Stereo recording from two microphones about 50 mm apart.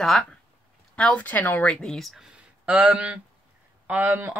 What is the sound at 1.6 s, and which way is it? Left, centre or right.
Speech, centre.